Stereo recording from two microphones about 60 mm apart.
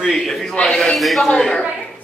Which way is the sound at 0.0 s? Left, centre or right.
Centre.